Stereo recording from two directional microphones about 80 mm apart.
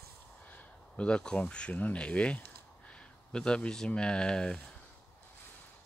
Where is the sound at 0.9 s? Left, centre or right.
Centre.